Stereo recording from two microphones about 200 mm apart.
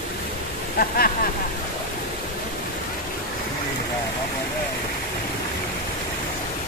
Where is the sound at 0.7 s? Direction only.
50° left (ahead or behind).